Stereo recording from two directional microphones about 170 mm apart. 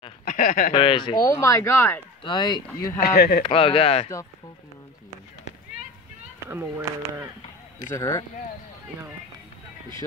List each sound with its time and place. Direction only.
0.2 s a sound: 50° left (ahead or behind)
0.7 s speech: 30° left (ahead or behind)
1.2 s speech: 20° left (ahead or behind)
2.2 s speech: 25° left (ahead or behind)
3.0 s speech: 65° left (ahead or behind)
3.4 s speech: 30° left (ahead or behind)
6.4 s speech: 15° right (ahead or behind)
7.9 s speech: 20° left (ahead or behind)